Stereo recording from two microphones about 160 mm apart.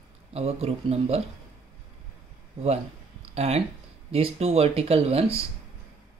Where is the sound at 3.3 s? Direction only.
40° right (ahead or behind).